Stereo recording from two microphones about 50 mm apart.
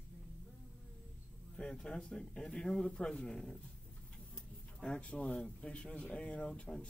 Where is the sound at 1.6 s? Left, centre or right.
Centre.